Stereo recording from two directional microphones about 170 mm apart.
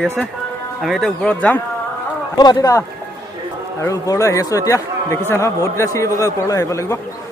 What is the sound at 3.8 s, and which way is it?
A man's voice, 20° left (ahead or behind).